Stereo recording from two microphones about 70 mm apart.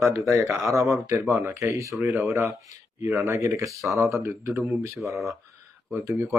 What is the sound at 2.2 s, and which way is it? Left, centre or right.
Speech, right.